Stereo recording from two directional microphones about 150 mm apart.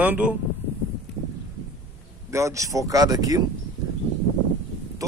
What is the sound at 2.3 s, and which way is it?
Speech, 20° right (ahead or behind).